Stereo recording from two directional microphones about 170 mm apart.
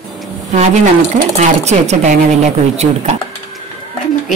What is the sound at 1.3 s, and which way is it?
Speech, 40° right (ahead or behind).